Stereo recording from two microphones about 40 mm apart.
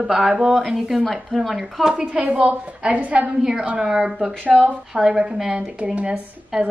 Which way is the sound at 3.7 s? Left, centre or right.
Centre.